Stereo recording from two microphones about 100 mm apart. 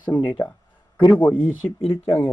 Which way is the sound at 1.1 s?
20° left (ahead or behind).